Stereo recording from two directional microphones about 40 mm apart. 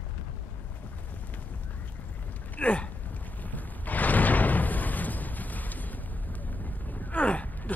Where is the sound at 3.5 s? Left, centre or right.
Left.